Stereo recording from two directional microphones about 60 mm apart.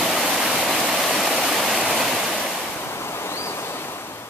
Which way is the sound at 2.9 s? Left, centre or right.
Left.